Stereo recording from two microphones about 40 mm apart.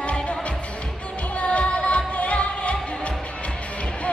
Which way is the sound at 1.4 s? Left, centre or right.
Left.